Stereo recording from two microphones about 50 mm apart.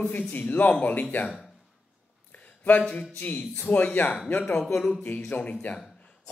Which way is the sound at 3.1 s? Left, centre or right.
Left.